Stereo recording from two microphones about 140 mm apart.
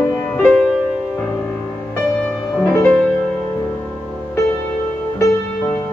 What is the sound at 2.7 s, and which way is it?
Music, 15° left (ahead or behind).